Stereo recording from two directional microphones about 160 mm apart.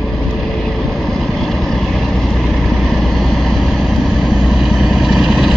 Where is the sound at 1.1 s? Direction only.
Centre (ahead or behind).